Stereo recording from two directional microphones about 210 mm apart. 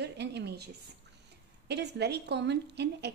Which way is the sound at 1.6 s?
50° right (ahead or behind).